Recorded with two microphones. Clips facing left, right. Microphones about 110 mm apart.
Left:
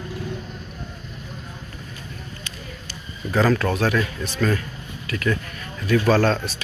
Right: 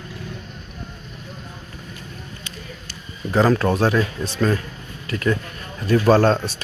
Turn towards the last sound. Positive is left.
turn(degrees=-25)  # may be behind; listen again after turning